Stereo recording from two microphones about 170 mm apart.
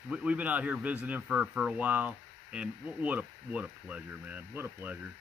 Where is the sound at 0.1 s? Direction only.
5° right (ahead or behind).